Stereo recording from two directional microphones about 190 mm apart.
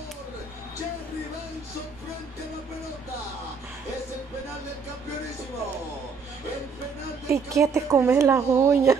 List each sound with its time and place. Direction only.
7.2 s speech: 15° right (ahead or behind)